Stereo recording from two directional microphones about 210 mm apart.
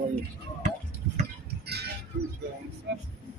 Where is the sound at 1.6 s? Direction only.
50° right (ahead or behind).